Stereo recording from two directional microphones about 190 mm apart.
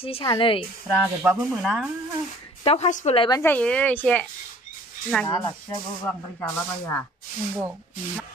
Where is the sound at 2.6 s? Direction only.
35° left (ahead or behind).